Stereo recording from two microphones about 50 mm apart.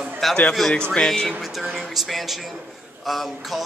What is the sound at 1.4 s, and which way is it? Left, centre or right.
A man's voice, centre.